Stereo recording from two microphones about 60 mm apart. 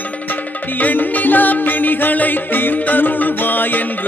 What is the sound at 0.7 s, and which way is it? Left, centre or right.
Music, left.